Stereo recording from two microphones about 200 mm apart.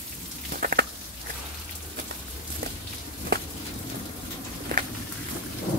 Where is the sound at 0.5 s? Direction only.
45° right (ahead or behind).